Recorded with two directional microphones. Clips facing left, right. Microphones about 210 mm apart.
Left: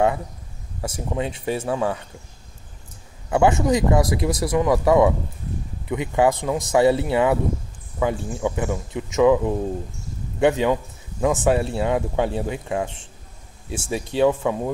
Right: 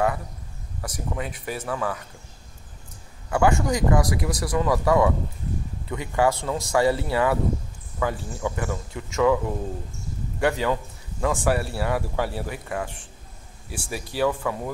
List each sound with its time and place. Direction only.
0.7 s a man's voice: 25° left (ahead or behind)
3.3 s a man's voice: 20° left (ahead or behind)